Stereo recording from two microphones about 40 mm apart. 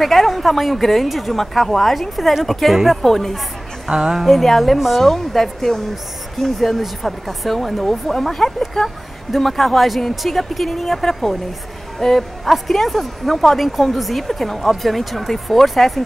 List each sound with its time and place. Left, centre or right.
0.0 s speech: centre
3.0 s speech: centre
3.9 s a woman's voice: centre
4.3 s speech: centre
5.0 s speech: centre